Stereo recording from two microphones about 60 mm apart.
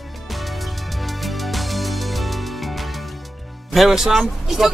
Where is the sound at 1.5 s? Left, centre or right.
Centre.